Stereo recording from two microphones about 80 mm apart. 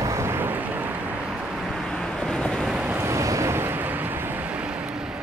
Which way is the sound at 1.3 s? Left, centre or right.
Centre.